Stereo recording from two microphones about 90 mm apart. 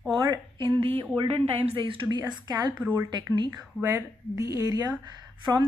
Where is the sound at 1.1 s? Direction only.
90° right; by 2.1 s 70° right (ahead or behind).